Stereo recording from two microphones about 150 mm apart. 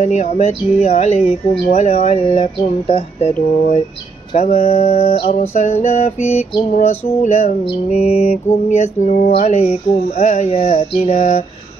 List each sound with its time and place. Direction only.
0.0 s mantra: 50° left (ahead or behind)
4.6 s mantra: 45° left (ahead or behind)